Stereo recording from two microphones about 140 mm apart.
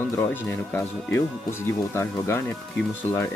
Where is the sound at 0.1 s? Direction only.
15° left (ahead or behind).